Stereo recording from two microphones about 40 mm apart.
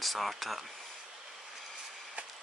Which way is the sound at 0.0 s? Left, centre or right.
Centre.